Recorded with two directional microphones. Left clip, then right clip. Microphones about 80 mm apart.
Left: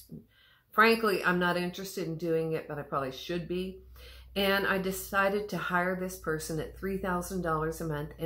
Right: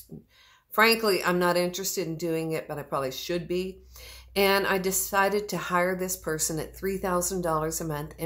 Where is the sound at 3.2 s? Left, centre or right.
Right.